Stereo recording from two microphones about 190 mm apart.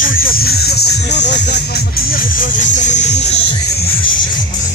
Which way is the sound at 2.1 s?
45° left (ahead or behind).